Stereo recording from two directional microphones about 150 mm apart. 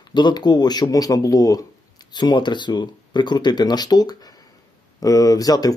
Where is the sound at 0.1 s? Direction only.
30° left (ahead or behind).